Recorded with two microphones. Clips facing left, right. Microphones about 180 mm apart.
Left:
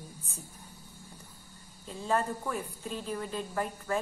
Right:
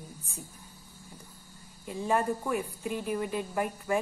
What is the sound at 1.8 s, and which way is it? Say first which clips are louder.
A woman's voice: right 2 dB; 15° right (ahead or behind).